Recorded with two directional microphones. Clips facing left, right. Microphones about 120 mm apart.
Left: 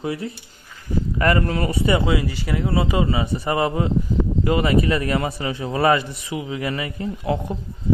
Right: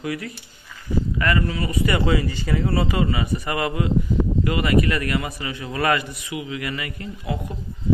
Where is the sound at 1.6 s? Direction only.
30° left (ahead or behind).